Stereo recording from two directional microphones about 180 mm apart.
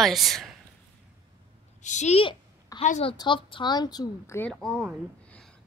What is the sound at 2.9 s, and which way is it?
A woman's voice, 35° left (ahead or behind).